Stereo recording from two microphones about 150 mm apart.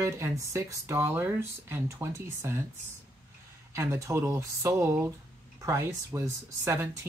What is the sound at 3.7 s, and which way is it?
Speech, 20° right (ahead or behind).